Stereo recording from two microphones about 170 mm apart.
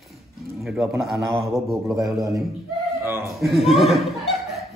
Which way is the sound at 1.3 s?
20° right (ahead or behind).